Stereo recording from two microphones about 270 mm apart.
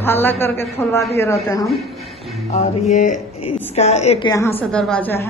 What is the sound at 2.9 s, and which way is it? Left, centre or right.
A woman's voice, left.